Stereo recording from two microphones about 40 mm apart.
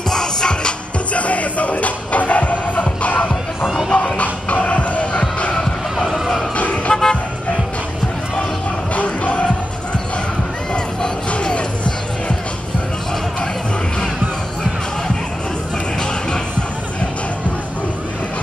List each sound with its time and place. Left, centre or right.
0.1 s music: centre
1.1 s music: left
5.9 s a sound: centre
6.5 s vehicle: left
6.9 s vehicle: centre
8.9 s music: left
11.2 s music: left